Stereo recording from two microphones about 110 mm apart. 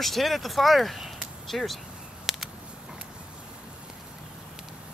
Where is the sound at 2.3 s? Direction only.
Centre (ahead or behind).